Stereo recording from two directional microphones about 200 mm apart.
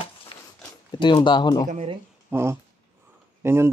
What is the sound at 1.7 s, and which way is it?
Speech, 35° right (ahead or behind).